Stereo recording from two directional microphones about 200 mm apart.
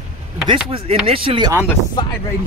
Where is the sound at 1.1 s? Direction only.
30° right (ahead or behind).